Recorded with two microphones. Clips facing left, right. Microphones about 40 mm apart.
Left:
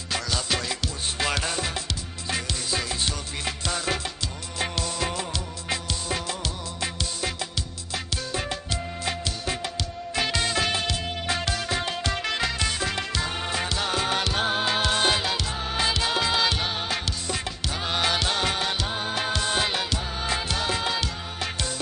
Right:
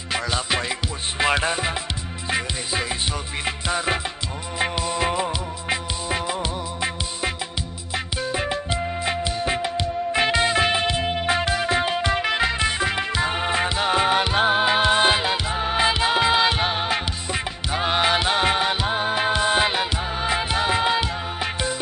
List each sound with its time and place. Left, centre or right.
0.1 s music: right